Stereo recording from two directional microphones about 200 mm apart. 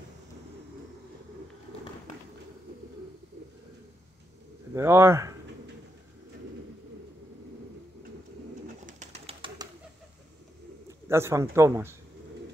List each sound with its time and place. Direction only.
4.7 s speech: 15° right (ahead or behind)
8.8 s bird: 35° right (ahead or behind)
10.9 s speech: 15° right (ahead or behind)